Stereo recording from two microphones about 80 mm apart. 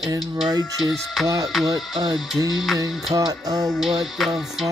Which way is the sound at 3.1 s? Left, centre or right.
Right.